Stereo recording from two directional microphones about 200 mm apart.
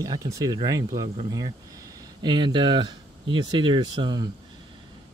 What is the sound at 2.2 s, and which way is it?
Speech, 25° right (ahead or behind).